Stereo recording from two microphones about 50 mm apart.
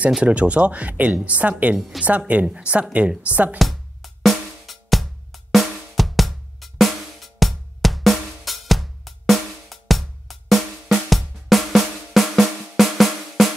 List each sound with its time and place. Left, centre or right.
0.2 s a woman's voice: right
3.5 s music: centre